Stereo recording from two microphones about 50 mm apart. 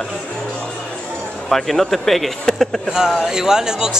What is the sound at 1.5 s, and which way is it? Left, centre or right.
Speech, centre.